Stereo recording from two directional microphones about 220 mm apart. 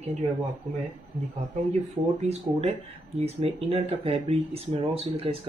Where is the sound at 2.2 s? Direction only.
30° right (ahead or behind).